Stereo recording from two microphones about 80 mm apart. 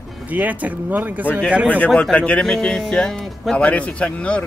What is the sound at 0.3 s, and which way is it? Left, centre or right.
Speech, centre.